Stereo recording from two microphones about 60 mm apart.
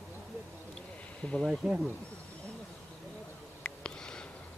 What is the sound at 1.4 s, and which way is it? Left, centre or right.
Speech, centre.